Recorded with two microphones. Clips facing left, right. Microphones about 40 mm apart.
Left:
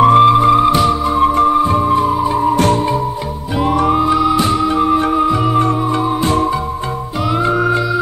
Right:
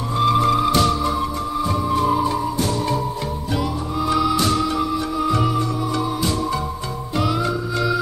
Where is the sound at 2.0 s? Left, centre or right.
Centre.